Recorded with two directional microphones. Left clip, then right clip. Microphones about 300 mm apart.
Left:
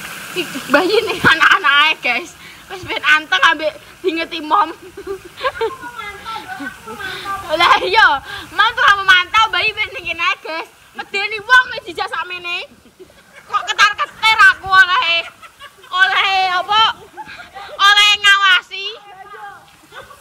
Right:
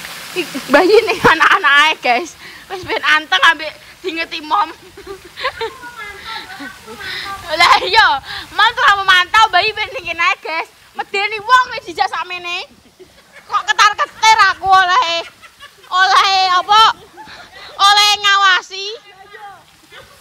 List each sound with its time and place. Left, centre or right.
0.7 s speech: centre; by 16.8 s right
17.3 s speech: centre